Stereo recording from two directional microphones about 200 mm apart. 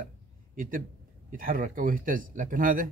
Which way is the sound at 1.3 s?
45° right (ahead or behind).